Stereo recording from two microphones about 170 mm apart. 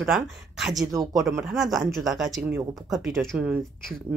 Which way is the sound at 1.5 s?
Centre (ahead or behind).